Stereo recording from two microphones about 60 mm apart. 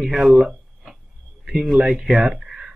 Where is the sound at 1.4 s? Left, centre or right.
Centre.